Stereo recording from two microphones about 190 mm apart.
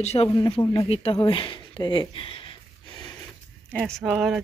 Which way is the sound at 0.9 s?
30° left (ahead or behind).